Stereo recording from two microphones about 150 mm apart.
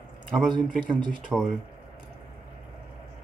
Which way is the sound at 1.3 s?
10° right (ahead or behind).